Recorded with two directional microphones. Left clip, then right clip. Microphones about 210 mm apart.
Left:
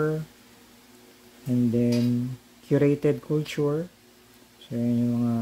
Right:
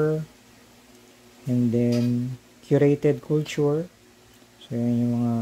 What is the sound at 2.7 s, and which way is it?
Speech, 5° right (ahead or behind).